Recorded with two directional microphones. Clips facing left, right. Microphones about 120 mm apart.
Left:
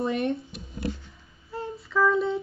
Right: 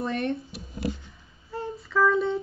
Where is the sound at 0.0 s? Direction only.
20° left (ahead or behind).